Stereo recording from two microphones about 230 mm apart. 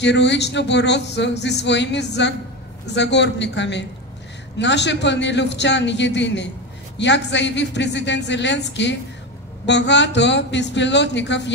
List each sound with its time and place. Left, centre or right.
0.0 s speech: left